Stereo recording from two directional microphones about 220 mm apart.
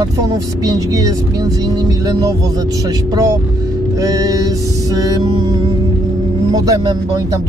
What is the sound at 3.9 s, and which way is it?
Speech, 15° right (ahead or behind).